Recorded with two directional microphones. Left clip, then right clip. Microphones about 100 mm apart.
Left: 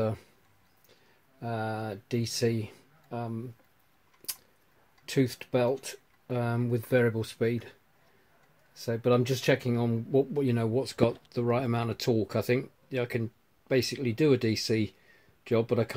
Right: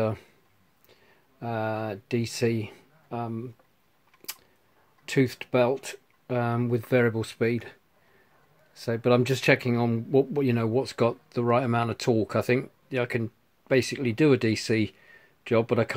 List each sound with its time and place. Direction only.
1.4 s speech: 25° right (ahead or behind)
5.0 s speech: 25° right (ahead or behind)
8.7 s speech: 30° right (ahead or behind)